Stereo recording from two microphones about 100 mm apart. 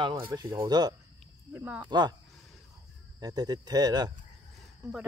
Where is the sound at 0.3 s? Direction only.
30° right (ahead or behind).